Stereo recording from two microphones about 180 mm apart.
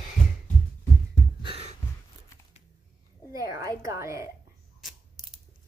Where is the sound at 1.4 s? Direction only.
35° right (ahead or behind).